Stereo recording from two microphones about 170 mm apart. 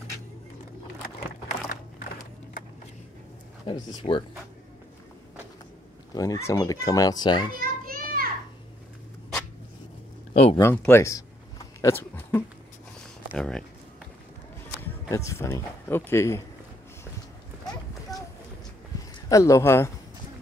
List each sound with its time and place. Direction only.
3.6 s speech: 30° left (ahead or behind)
6.1 s speech: 20° left (ahead or behind)
7.5 s children playing: 60° right (ahead or behind)
10.3 s speech: 35° left (ahead or behind)
10.6 s speech: 15° left (ahead or behind)
15.0 s speech: 20° left (ahead or behind)
19.2 s speech: 20° left (ahead or behind)